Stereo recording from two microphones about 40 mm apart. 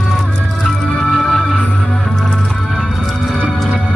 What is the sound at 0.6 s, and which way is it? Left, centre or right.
Music, centre.